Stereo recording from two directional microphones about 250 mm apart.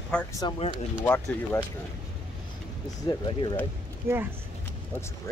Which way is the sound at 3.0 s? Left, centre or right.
Centre.